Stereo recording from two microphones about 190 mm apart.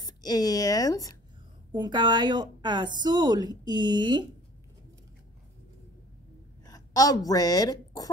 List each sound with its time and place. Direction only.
0.0 s a woman's voice: 20° left (ahead or behind)
1.7 s a woman's voice: 25° right (ahead or behind)
6.6 s speech: 20° left (ahead or behind)